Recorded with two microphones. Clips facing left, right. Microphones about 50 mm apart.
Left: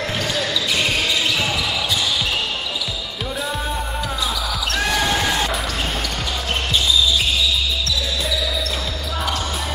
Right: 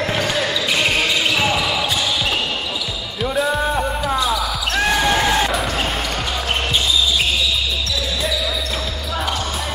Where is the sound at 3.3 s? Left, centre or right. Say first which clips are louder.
Right 7 dB; centre.